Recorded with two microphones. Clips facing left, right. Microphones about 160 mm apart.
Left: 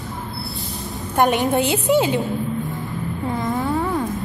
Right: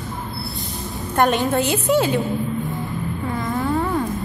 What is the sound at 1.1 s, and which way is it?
A woman's voice, 15° left (ahead or behind).